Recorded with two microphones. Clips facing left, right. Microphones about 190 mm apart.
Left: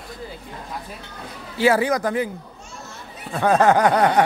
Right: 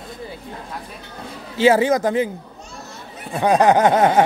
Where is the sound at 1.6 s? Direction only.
20° right (ahead or behind).